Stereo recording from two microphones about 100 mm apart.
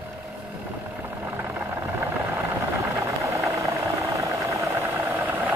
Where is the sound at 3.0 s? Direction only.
30° right (ahead or behind).